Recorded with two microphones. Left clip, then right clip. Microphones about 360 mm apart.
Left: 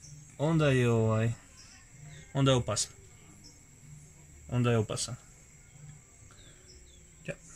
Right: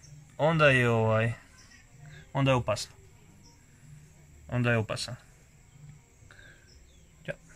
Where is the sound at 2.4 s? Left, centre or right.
Right.